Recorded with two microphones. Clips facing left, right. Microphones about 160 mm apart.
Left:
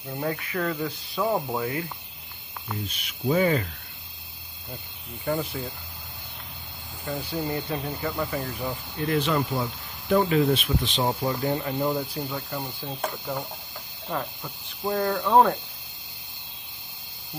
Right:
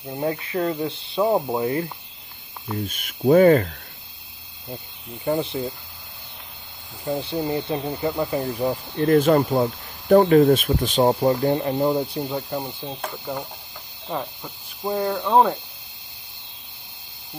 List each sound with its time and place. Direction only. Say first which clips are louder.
0.2 s speech: right 5 dB; 25° right (ahead or behind)
2.9 s speech: right 9 dB; 50° right (ahead or behind)
5.2 s speech: right 4 dB; 25° right (ahead or behind)
7.1 s speech: right 5 dB; 25° right (ahead or behind)
8.5 s speech: right 8 dB; 35° right (ahead or behind)
12.3 s speech: right 5 dB; 20° right (ahead or behind)
13.0 s speech: left 1 dB; centre (ahead or behind)
14.9 s speech: right 2 dB; 15° right (ahead or behind)